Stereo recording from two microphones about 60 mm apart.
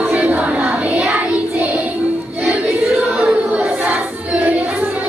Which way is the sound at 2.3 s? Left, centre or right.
Right.